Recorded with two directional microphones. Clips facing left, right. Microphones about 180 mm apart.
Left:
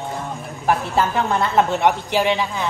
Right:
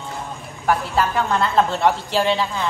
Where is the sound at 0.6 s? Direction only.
25° left (ahead or behind).